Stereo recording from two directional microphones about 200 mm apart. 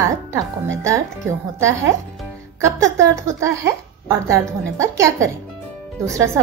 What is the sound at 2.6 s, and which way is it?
A woman's voice, 15° right (ahead or behind).